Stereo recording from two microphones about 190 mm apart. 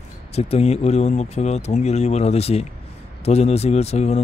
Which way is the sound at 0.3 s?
35° left (ahead or behind).